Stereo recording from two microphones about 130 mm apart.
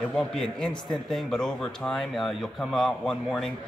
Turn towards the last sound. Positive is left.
turn(degrees=0)  # may be behind; listen again after turning